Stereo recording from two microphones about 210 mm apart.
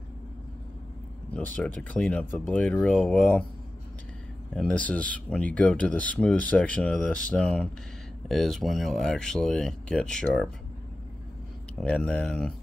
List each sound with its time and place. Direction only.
1.3 s speech: 5° left (ahead or behind)
4.6 s speech: 5° left (ahead or behind)
11.8 s speech: 5° left (ahead or behind)